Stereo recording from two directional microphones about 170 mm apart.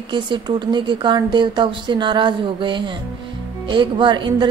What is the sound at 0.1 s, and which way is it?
A woman's voice, 25° right (ahead or behind).